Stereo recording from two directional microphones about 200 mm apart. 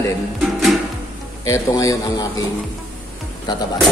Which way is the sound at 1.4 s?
15° left (ahead or behind).